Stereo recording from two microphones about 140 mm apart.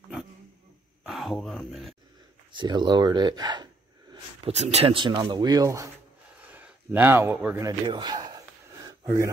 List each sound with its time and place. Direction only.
1.0 s a sound: centre (ahead or behind)
2.5 s speech: 35° right (ahead or behind)
4.1 s speech: 45° right (ahead or behind); by 5.9 s 25° right (ahead or behind)
6.5 s speech: 15° right (ahead or behind)
7.8 s speech: 30° right (ahead or behind)